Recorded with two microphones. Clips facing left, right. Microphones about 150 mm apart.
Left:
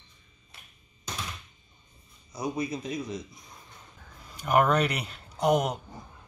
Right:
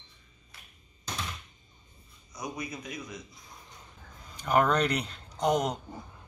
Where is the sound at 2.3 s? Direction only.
30° left (ahead or behind).